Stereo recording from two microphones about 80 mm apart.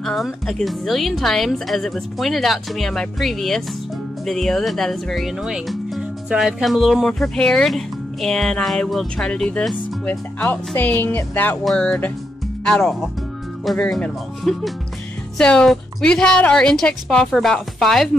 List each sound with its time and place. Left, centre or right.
0.0 s speech: centre; by 11.5 s left
11.6 s a woman's voice: centre